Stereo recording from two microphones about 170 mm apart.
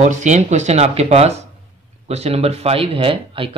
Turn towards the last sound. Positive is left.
turn(degrees=-30)  # may be behind; listen again after turning